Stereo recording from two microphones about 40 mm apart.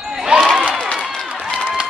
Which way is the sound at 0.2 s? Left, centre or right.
Centre.